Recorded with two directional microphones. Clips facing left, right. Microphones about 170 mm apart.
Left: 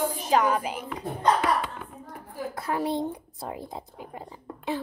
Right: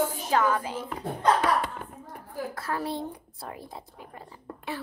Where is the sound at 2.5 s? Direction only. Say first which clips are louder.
Left 6 dB; 20° left (ahead or behind).